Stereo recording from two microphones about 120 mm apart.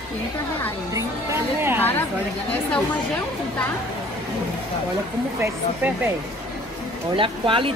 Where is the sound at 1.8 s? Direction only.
15° left (ahead or behind).